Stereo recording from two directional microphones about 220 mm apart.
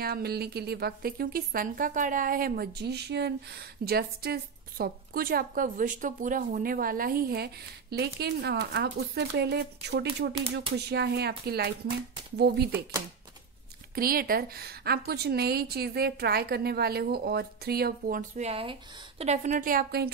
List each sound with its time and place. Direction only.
0.0 s a woman's voice: 45° right (ahead or behind)
13.9 s a woman's voice: 40° right (ahead or behind)